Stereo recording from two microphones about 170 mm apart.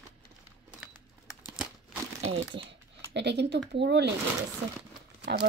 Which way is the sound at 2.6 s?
90° right.